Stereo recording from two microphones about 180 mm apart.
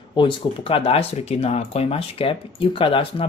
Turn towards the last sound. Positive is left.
turn(degrees=30)  # may be behind; listen again after turning